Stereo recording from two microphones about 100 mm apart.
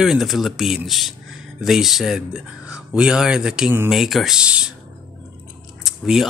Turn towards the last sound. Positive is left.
turn(degrees=-5)  # may be behind; listen again after turning